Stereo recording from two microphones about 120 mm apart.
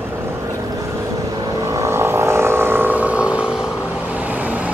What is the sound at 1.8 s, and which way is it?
Vehicle, 20° right (ahead or behind).